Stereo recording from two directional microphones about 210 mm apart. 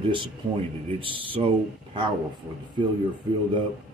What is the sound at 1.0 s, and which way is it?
Speech, 25° right (ahead or behind).